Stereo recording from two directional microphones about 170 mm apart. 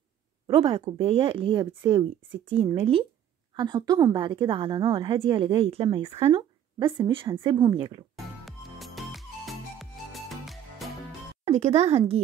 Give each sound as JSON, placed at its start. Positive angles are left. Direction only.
{"t": 0.5, "sound": "a woman's voice", "side_deg": -30}
{"t": 8.5, "sound": "music", "side_deg": 0}
{"t": 11.4, "sound": "speech", "side_deg": -40}